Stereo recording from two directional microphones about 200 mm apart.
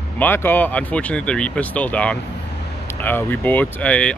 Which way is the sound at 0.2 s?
10° left (ahead or behind).